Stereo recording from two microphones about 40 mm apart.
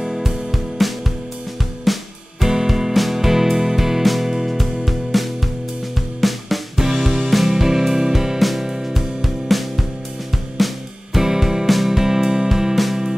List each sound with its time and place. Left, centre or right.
0.0 s music: centre